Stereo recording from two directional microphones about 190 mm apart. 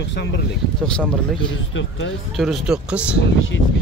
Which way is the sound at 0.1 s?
65° left (ahead or behind).